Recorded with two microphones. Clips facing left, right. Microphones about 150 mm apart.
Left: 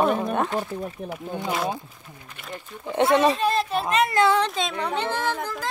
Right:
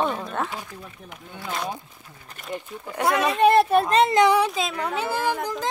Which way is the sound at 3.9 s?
30° right (ahead or behind).